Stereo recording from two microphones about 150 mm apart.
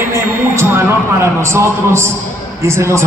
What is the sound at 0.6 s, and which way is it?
A man's voice, 15° right (ahead or behind).